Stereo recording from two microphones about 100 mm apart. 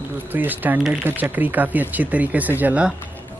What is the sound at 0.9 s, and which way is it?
Speech, 20° right (ahead or behind).